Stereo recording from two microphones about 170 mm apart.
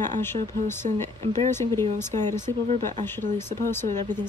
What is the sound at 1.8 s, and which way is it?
Speech, 45° right (ahead or behind).